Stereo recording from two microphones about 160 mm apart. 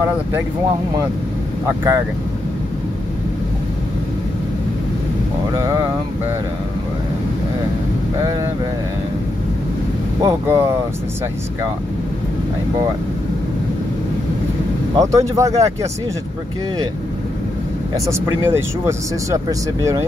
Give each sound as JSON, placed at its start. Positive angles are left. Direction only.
{"t": 5.5, "sound": "speech", "side_deg": -20}
{"t": 10.2, "sound": "speech", "side_deg": -20}
{"t": 15.0, "sound": "speech", "side_deg": -20}
{"t": 17.9, "sound": "speech", "side_deg": -20}